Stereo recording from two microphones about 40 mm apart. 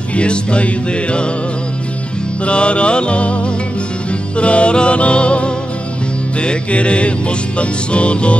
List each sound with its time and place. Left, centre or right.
0.1 s music: left
2.4 s music: left